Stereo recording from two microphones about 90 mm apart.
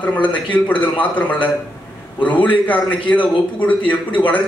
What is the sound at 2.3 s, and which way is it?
Speech, 65° left (ahead or behind).